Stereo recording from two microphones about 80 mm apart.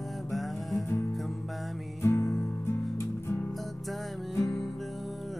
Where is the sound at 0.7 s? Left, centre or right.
Left.